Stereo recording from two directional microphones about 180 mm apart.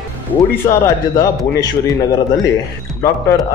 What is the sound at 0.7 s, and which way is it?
A man's voice, 20° left (ahead or behind).